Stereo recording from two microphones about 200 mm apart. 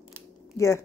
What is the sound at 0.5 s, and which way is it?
Speech, 15° left (ahead or behind).